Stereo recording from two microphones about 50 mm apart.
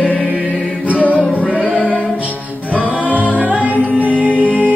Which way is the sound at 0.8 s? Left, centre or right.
Right.